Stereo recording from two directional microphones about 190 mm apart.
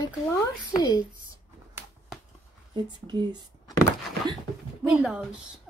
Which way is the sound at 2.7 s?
25° right (ahead or behind).